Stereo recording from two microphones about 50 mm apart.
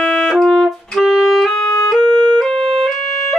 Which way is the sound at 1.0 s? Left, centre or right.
Centre.